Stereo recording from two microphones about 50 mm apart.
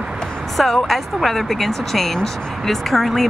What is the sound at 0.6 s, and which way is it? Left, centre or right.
Speech, centre.